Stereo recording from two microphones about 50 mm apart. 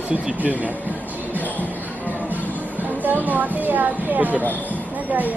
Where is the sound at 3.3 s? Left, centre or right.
Right.